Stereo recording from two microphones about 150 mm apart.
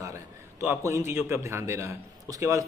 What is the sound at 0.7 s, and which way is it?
A man's voice, 20° right (ahead or behind).